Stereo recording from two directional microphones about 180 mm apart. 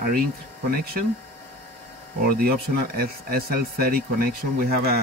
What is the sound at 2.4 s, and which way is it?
Speech, 55° right (ahead or behind).